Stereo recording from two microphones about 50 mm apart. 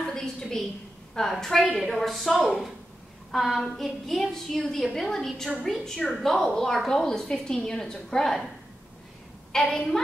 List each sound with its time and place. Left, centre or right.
0.0 s a sound: centre
1.1 s a woman's voice: centre
3.3 s child singing: centre
3.6 s a woman's voice: centre
4.6 s a woman's voice: centre
4.9 s a woman's voice: centre
9.5 s a woman's voice: centre